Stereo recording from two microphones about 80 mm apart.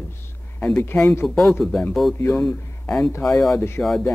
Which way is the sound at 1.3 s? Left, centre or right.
Centre.